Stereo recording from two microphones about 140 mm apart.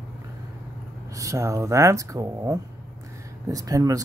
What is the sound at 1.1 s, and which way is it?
Speech, 20° right (ahead or behind).